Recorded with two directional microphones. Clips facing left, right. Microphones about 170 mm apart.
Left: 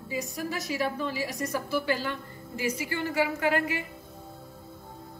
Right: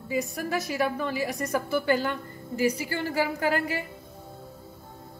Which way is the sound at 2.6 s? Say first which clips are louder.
Right 4 dB; 35° right (ahead or behind).